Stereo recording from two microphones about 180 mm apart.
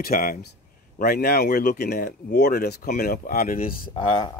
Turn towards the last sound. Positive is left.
turn(degrees=25)  # may be behind; listen again after turning